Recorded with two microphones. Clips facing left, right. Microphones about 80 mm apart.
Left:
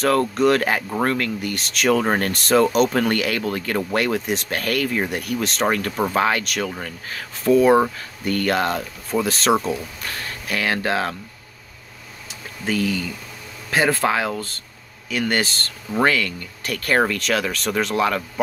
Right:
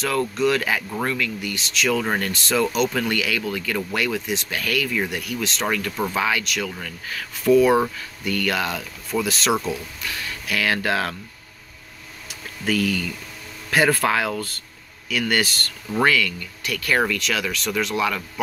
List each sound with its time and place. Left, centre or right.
0.0 s speech: left
6.7 s speech: left
12.3 s a sound: left
13.7 s speech: left